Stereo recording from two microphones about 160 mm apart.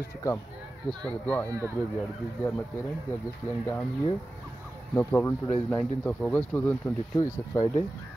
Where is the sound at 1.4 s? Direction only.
20° right (ahead or behind).